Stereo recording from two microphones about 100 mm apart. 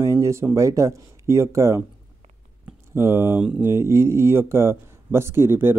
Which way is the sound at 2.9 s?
25° right (ahead or behind).